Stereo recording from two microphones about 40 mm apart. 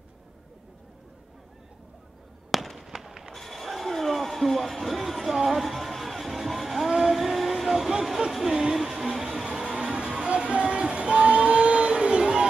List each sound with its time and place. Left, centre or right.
2.5 s fireworks: centre
3.3 s a sound: centre
7.1 s vehicle: centre
8.5 s music: centre
9.7 s music: right
10.1 s a sound: right